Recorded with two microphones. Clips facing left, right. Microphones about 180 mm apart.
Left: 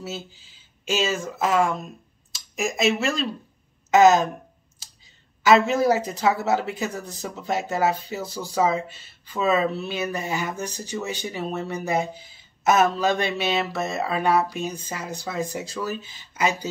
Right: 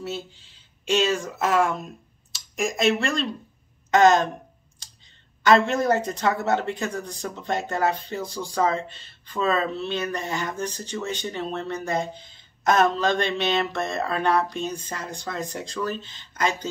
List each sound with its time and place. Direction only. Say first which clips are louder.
0.0 s speech: right 2 dB; centre (ahead or behind)